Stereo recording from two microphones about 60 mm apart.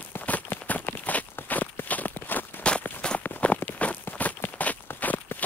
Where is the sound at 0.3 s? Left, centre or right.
Left.